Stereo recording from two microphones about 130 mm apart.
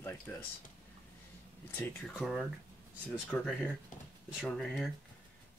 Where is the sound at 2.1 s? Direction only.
Centre (ahead or behind).